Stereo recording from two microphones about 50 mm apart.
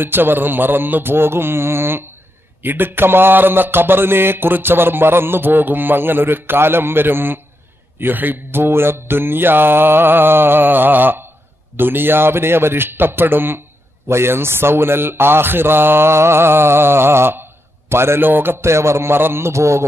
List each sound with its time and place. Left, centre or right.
0.0 s speech: right
14.0 s a man's voice: right